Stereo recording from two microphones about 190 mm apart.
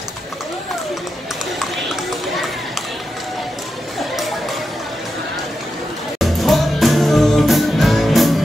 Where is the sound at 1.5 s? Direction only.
Centre (ahead or behind).